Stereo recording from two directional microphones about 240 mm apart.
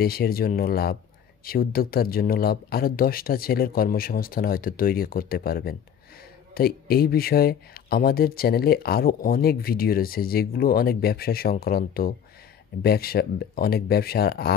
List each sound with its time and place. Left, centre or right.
0.0 s speech: left